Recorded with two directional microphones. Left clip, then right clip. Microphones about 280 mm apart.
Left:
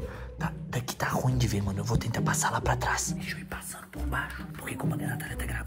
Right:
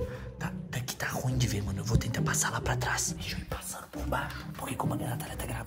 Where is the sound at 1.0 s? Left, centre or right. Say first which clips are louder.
Left 4 dB; centre.